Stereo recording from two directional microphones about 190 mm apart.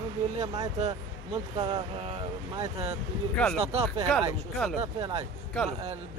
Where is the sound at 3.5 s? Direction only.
30° right (ahead or behind).